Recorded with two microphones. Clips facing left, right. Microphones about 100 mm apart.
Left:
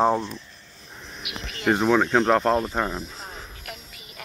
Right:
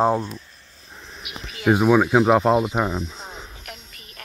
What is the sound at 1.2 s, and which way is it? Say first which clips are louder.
Insect: right 2 dB; centre (ahead or behind).